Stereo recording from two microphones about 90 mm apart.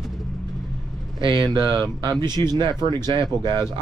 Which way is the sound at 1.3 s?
50° right (ahead or behind).